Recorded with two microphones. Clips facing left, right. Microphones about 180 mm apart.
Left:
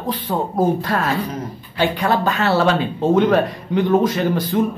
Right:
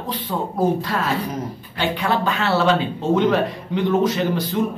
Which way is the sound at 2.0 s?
45° left (ahead or behind).